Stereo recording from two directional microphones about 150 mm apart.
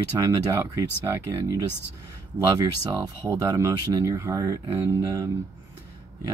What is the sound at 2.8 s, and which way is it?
Speech, 20° right (ahead or behind).